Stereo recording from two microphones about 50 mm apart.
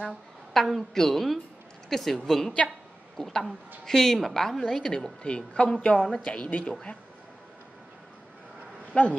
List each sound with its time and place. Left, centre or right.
0.5 s a woman's voice: centre
4.9 s a woman's voice: centre
8.9 s a woman's voice: left